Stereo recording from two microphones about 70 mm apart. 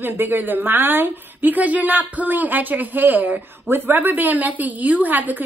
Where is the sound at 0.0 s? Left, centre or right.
Right.